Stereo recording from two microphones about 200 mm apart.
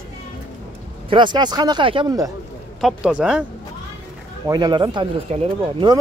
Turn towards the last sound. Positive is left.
turn(degrees=-25)  # may be behind; listen again after turning